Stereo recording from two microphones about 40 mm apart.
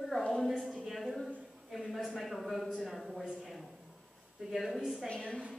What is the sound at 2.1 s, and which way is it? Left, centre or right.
Speech, centre.